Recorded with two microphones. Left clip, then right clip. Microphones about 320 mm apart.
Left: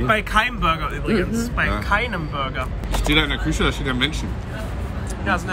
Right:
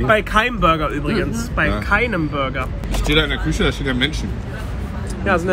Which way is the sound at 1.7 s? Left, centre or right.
Centre.